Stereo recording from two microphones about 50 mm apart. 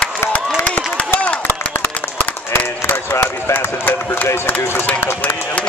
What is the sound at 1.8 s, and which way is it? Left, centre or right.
Run, left.